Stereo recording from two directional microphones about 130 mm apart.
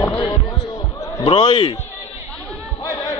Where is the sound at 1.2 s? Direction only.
45° left (ahead or behind).